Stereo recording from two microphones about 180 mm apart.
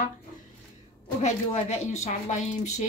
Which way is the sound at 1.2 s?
40° left (ahead or behind).